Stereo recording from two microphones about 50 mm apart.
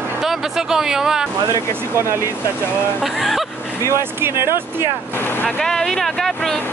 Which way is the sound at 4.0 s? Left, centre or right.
Right.